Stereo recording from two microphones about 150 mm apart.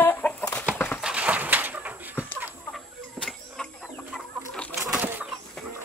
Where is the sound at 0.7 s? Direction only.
15° left (ahead or behind).